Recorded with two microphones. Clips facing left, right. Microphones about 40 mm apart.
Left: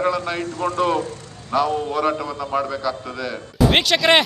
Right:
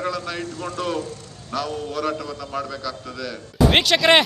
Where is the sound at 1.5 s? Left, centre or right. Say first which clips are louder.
Left 6 dB; centre.